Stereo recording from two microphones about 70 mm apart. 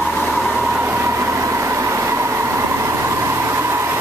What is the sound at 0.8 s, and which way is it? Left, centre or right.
Train, right.